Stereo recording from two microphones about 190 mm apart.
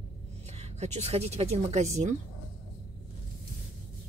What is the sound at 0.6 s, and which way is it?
A woman's voice, 35° right (ahead or behind).